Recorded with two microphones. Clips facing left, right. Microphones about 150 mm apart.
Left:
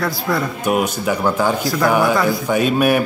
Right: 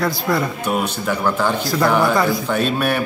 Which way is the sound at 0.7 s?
10° left (ahead or behind).